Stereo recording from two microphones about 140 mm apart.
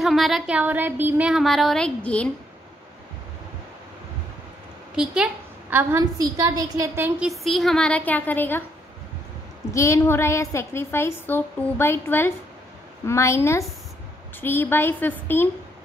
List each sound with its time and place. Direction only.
0.0 s speech: centre (ahead or behind)
4.9 s a woman's voice: 5° right (ahead or behind)
7.2 s a woman's voice: centre (ahead or behind)
9.7 s a woman's voice: 20° left (ahead or behind)